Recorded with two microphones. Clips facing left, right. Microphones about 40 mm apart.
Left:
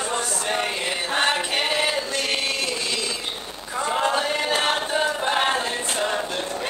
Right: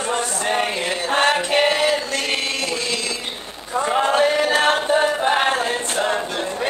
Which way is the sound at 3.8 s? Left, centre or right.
Right.